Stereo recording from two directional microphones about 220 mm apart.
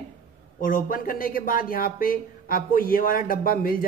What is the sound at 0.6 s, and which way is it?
Speech, 40° left (ahead or behind).